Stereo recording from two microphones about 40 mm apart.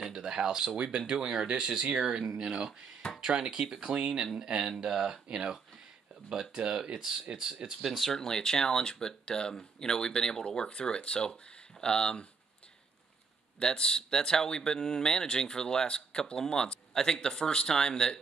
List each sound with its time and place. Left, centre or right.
0.0 s speech: centre
6.5 s speech: centre
8.1 s speech: centre
13.6 s speech: left